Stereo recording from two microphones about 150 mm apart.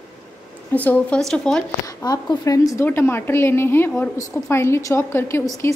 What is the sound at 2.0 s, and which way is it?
A woman's voice, 25° left (ahead or behind).